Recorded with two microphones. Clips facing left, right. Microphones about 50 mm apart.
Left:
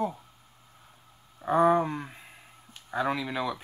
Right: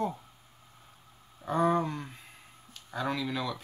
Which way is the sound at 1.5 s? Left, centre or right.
Centre.